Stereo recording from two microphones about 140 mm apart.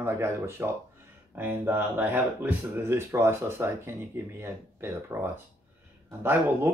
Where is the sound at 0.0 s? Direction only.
20° right (ahead or behind).